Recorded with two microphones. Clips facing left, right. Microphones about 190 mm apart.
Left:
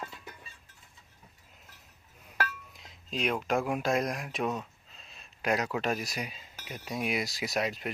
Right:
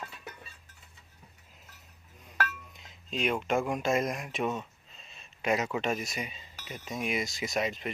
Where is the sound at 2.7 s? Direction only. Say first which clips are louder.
Even; centre (ahead or behind).